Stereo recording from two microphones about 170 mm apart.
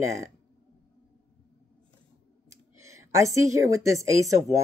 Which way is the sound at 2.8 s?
15° right (ahead or behind).